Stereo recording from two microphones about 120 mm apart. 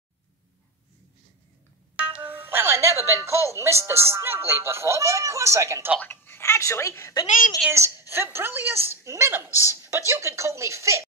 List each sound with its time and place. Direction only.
2.0 s music: 10° right (ahead or behind)
5.9 s a woman's voice: 15° left (ahead or behind)
7.8 s speech: 25° right (ahead or behind)